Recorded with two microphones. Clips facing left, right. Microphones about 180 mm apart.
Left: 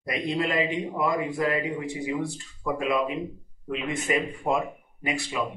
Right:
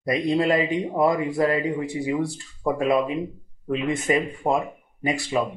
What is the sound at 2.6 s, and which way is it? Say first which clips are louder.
Speech: right 5 dB; 40° right (ahead or behind).